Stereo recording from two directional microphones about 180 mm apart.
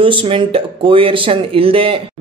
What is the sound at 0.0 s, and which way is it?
Speech, 30° right (ahead or behind).